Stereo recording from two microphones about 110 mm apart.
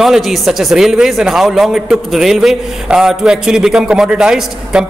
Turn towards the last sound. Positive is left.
turn(degrees=-5)  # may be behind; listen again after turning